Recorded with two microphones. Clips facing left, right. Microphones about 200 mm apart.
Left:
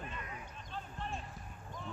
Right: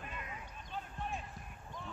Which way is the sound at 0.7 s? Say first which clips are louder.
Right 1 dB; 5° right (ahead or behind).